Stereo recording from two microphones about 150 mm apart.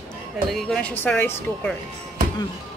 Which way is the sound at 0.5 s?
5° left (ahead or behind).